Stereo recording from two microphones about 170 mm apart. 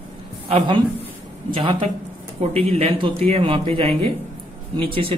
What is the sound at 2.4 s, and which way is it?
Speech, 35° right (ahead or behind).